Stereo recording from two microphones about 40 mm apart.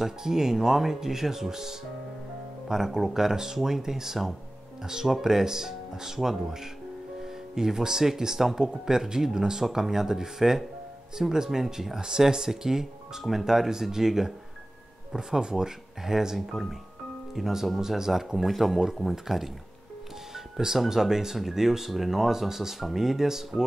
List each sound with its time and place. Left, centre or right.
0.0 s speech: centre
7.5 s speech: centre
13.2 s speech: centre
13.5 s speech: centre
17.4 s speech: centre